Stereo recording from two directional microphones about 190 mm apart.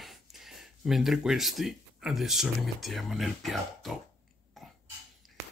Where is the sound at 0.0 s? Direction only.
Centre (ahead or behind).